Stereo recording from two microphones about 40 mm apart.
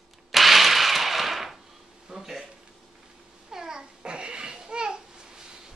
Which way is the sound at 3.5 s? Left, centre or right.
Centre.